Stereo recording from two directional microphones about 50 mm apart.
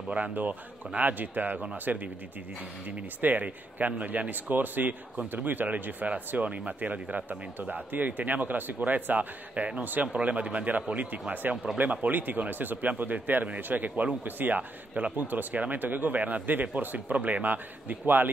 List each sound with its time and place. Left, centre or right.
0.1 s speech: right
3.2 s speech: right
11.5 s speech: centre
11.8 s speech: right